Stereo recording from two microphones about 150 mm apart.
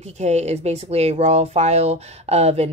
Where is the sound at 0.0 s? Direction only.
50° right (ahead or behind).